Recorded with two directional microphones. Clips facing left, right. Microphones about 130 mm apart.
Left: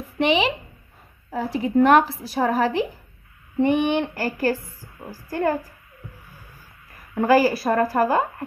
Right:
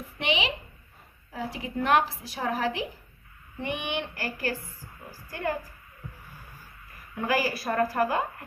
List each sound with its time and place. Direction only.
0.2 s a woman's voice: 40° left (ahead or behind)
7.2 s a woman's voice: 40° left (ahead or behind)